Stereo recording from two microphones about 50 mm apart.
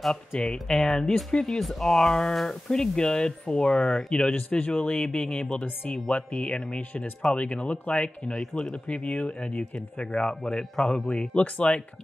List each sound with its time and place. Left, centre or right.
0.0 s speech: centre
11.1 s speech: left